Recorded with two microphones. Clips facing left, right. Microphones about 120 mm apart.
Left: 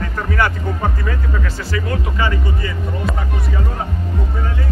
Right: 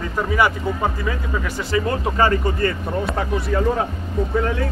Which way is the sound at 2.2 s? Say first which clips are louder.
Right 7 dB; 45° right (ahead or behind).